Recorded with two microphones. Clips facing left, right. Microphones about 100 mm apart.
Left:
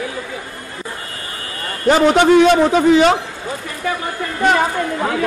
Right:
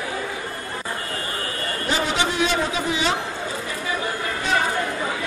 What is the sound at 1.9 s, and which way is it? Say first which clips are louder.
A man's voice: left 13 dB; 55° left (ahead or behind).